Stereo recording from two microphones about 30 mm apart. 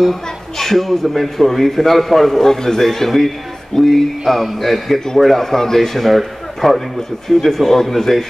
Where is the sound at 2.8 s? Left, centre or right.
Centre.